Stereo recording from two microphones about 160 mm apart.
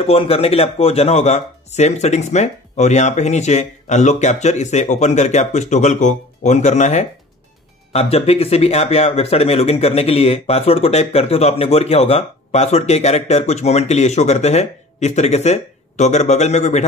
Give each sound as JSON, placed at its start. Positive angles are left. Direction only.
{"t": 0.0, "sound": "speech", "side_deg": 40}